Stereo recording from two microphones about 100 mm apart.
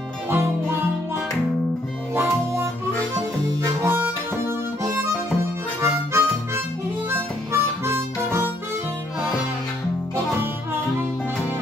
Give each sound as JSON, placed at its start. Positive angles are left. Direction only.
{"t": 0.3, "sound": "music", "side_deg": -25}
{"t": 2.1, "sound": "music", "side_deg": -25}
{"t": 3.8, "sound": "harmonica", "side_deg": -20}